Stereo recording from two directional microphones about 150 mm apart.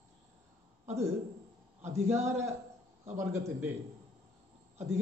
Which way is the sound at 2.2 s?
20° right (ahead or behind).